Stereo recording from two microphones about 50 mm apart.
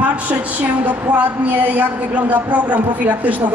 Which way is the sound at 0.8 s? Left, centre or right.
Right.